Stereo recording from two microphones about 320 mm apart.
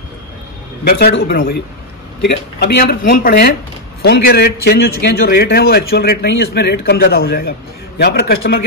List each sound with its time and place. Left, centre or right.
0.8 s a man's voice: left